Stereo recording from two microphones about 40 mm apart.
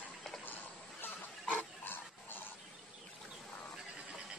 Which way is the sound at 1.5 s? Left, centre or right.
Left.